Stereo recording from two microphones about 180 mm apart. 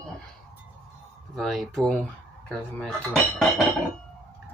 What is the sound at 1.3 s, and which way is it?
Dishes, centre (ahead or behind).